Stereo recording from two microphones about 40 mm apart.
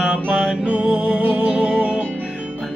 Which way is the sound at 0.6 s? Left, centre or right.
Right.